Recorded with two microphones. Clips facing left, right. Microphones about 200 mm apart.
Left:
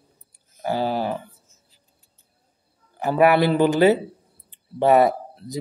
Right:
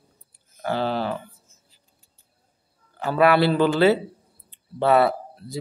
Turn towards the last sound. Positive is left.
turn(degrees=15)  # may be behind; listen again after turning